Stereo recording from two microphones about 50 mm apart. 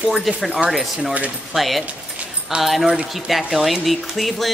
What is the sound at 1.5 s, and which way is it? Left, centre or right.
Speech, centre.